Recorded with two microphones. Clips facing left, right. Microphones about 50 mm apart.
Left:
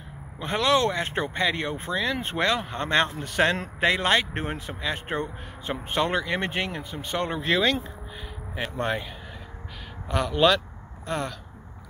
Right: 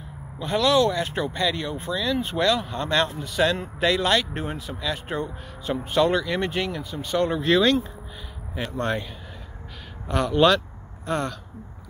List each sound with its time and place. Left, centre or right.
0.4 s speech: left
3.8 s speech: left; by 9.0 s centre
10.0 s speech: centre